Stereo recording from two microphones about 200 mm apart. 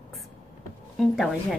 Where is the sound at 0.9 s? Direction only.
Centre (ahead or behind).